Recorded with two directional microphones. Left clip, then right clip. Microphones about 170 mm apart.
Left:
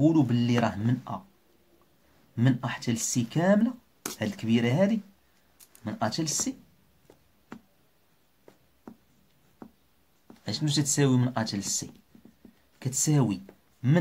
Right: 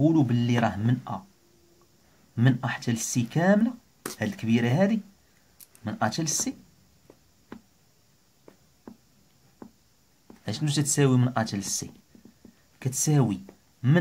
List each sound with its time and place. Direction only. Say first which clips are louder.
0.0 s speech: even; 10° right (ahead or behind)
2.3 s speech: right 2 dB; 20° right (ahead or behind)
10.4 s speech: left 1 dB; 20° right (ahead or behind)
12.7 s speech: right 1 dB; 20° right (ahead or behind)